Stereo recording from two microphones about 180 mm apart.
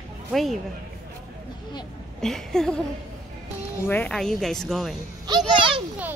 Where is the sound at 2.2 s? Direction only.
5° left (ahead or behind).